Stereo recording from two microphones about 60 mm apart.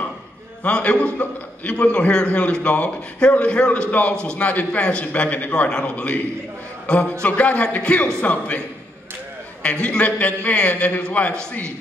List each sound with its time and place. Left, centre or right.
0.7 s a man's voice: centre